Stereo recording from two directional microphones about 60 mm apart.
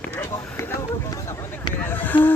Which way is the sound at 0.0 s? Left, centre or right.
Left.